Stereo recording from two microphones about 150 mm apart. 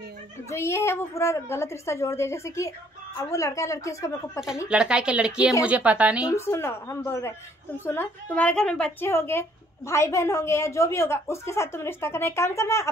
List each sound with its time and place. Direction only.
0.5 s a woman's voice: 20° left (ahead or behind)
4.6 s speech: 5° right (ahead or behind)
6.2 s a woman's voice: 20° left (ahead or behind)